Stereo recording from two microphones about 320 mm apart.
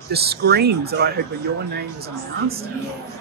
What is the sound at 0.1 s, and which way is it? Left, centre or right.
Speech, right.